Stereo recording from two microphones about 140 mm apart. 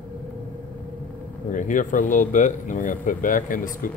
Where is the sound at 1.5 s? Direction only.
65° left (ahead or behind).